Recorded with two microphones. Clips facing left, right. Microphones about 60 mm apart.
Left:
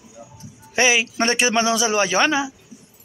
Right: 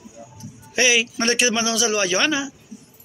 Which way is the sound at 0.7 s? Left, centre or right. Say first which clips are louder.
Left 1 dB; left.